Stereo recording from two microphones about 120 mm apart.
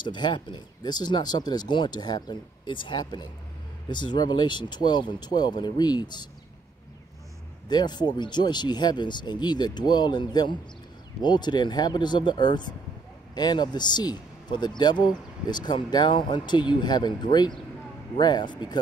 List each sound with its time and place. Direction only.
0.0 s a man's voice: 40° left (ahead or behind)
7.6 s a man's voice: 35° left (ahead or behind)